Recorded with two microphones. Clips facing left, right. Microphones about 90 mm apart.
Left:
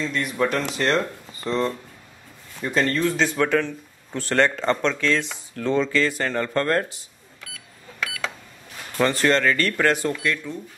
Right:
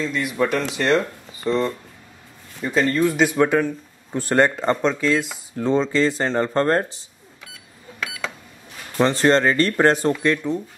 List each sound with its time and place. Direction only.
0.0 s speech: 5° right (ahead or behind)
5.6 s speech: 25° right (ahead or behind)
8.9 s speech: 25° right (ahead or behind)